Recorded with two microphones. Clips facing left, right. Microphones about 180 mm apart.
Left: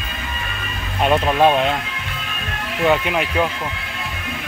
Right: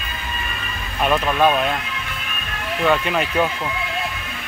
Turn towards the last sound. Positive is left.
turn(degrees=10)  # may be behind; listen again after turning